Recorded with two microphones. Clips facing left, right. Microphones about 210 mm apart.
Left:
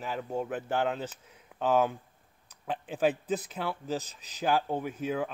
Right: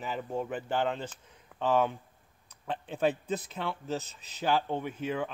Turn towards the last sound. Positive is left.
turn(degrees=5)  # may be behind; listen again after turning